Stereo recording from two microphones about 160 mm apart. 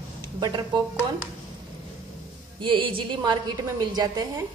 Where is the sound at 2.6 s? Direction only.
30° right (ahead or behind).